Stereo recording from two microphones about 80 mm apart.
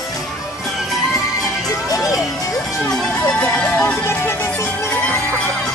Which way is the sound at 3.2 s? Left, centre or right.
Centre.